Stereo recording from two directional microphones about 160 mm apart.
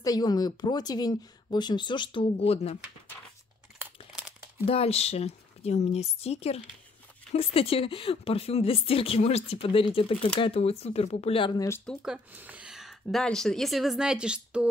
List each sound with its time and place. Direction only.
0.0 s speech: 25° left (ahead or behind); by 2.8 s 40° left (ahead or behind)
4.1 s crumpling: 10° right (ahead or behind)
4.6 s a woman's voice: 40° left (ahead or behind)
11.8 s speech: centre (ahead or behind)